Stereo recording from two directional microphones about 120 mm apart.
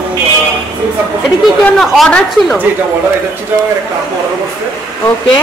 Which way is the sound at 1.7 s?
Centre (ahead or behind).